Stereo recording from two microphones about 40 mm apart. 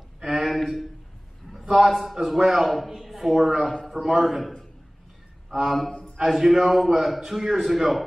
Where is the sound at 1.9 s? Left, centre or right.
Centre.